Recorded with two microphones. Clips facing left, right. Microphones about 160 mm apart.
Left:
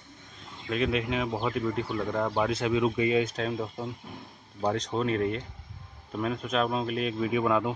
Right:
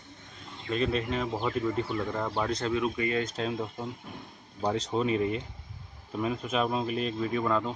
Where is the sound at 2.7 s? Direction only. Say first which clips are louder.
Left 6 dB; 20° left (ahead or behind).